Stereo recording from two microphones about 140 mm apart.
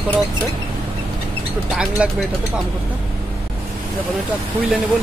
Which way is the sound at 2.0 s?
5° right (ahead or behind).